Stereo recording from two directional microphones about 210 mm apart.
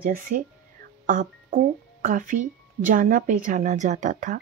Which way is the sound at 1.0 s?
40° right (ahead or behind).